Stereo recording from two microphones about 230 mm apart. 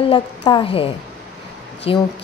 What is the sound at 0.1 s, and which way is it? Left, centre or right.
Speech, left.